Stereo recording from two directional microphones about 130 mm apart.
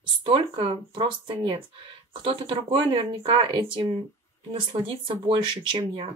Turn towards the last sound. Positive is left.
turn(degrees=-40)  # may be behind; listen again after turning